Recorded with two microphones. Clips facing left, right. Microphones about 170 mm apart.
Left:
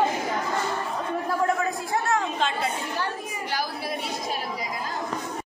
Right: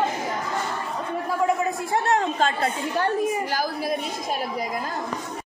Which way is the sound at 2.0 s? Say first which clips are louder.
Right 4 dB; 35° right (ahead or behind).